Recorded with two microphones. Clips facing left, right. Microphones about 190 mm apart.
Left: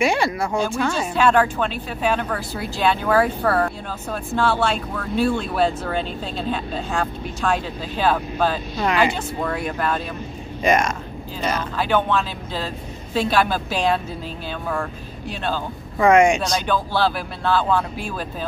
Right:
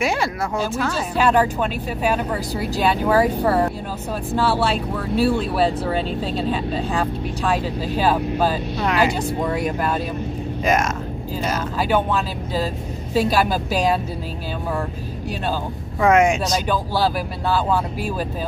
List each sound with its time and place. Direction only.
0.0 s speech: centre (ahead or behind)
2.5 s speech: 40° right (ahead or behind)
2.8 s speech: 10° right (ahead or behind)
10.6 s speech: 5° right (ahead or behind)
16.0 s speech: 5° right (ahead or behind)